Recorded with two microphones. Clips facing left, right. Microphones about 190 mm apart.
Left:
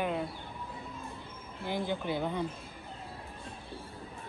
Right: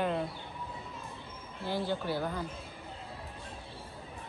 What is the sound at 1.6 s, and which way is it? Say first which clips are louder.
Speech: even; 15° left (ahead or behind).